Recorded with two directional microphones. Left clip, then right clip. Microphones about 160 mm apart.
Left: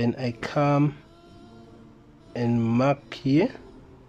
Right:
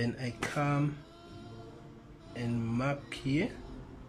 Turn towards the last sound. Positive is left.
turn(degrees=35)  # may be behind; listen again after turning